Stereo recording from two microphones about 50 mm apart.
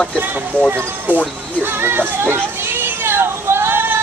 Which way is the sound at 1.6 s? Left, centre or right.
Right.